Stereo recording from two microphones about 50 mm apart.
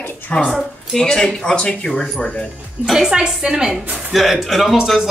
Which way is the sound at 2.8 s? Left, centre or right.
Centre.